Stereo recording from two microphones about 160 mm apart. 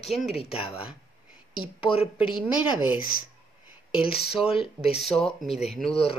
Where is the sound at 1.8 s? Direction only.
35° left (ahead or behind).